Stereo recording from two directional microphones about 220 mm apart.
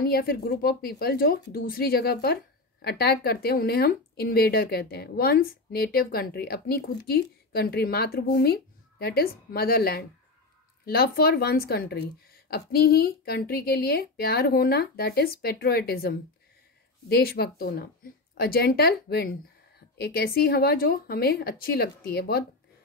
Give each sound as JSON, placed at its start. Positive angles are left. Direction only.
{"t": 0.0, "sound": "speech", "side_deg": 45}